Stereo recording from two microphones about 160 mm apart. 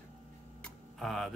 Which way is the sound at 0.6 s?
Centre (ahead or behind).